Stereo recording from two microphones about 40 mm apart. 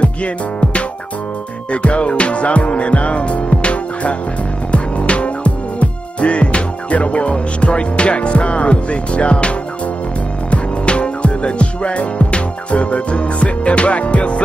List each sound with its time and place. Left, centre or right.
0.0 s music: left